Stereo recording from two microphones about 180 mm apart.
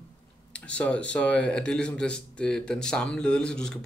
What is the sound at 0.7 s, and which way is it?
Speech, 5° left (ahead or behind).